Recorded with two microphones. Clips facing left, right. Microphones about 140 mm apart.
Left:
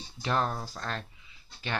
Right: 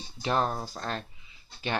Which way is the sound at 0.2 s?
15° right (ahead or behind).